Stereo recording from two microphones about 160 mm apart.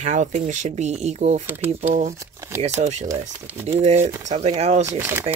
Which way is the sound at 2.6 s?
45° right (ahead or behind).